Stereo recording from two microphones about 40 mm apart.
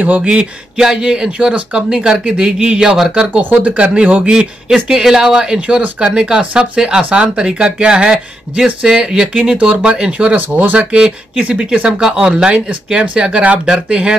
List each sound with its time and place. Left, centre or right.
0.0 s speech: right
0.7 s speech: centre
3.6 s speech: right
4.2 s speech: right
9.7 s speech: right
10.3 s speech: right
10.9 s speech: right
12.0 s speech: centre